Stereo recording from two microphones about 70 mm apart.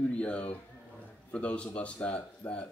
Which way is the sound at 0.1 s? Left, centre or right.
Centre.